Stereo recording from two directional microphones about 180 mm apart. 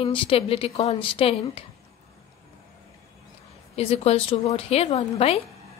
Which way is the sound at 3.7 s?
35° left (ahead or behind).